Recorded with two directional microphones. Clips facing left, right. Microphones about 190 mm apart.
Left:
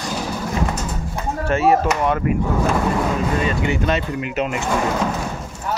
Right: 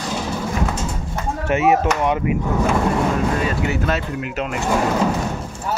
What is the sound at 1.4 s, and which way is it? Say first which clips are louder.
Speech: even; 20° right (ahead or behind).